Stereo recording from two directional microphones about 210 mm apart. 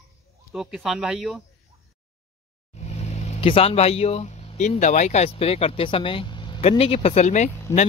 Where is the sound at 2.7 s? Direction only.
30° left (ahead or behind).